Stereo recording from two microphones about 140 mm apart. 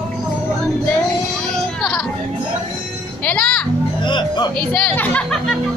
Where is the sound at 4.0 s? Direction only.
30° left (ahead or behind).